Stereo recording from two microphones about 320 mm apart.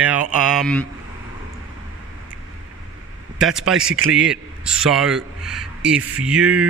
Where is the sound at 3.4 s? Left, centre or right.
Centre.